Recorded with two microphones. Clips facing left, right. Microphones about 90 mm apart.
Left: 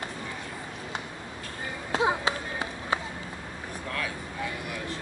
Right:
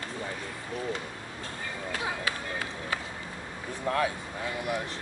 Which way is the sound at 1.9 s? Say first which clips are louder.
Left 8 dB; 25° left (ahead or behind).